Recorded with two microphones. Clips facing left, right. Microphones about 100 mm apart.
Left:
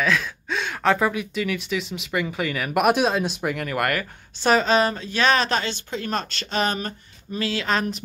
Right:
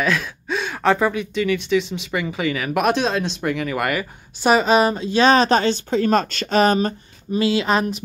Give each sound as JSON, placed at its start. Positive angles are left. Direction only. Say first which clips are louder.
{"t": 0.0, "sound": "speech", "louder": "right 2 dB", "side_deg": -5}
{"t": 7.3, "sound": "speech", "louder": "right 6 dB", "side_deg": -15}